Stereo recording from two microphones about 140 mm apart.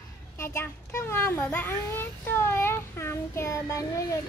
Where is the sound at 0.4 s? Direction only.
20° left (ahead or behind).